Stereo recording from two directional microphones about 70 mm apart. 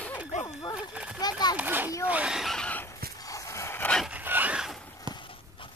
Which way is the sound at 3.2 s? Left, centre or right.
Left.